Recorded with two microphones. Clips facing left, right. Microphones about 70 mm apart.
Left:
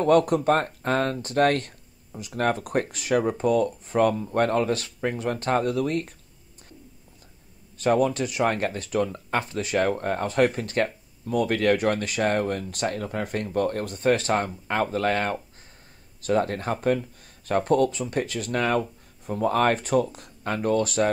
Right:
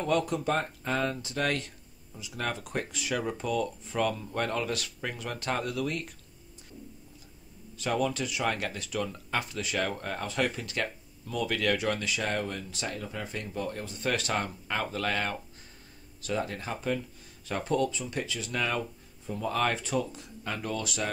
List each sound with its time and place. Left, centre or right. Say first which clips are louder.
0.0 s speech: left 9 dB; left
7.7 s speech: left 8 dB; left
13.9 s speech: left 7 dB; left